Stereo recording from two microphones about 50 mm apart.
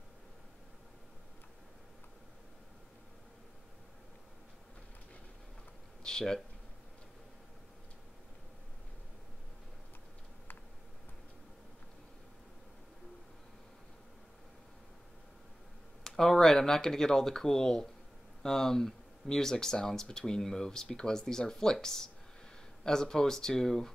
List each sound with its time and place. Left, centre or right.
6.0 s speech: centre
16.0 s speech: centre